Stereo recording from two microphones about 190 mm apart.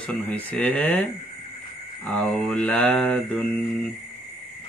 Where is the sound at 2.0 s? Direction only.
5° left (ahead or behind).